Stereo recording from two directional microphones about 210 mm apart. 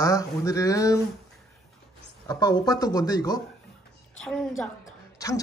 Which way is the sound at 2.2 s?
20° left (ahead or behind).